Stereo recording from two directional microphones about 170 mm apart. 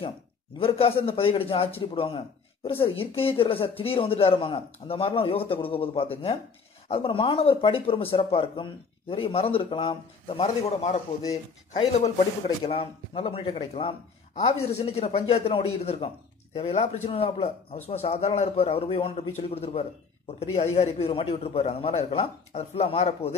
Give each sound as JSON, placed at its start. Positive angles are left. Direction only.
{"t": 0.6, "sound": "speech", "side_deg": 35}